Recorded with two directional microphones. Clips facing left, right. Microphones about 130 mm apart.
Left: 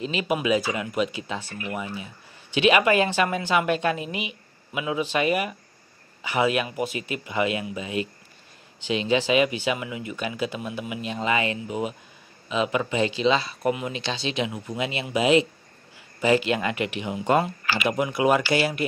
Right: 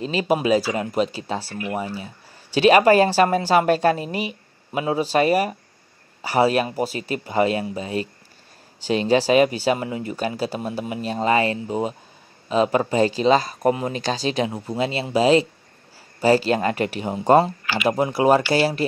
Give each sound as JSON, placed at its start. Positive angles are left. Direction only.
{"t": 0.0, "sound": "a woman's voice", "side_deg": -35}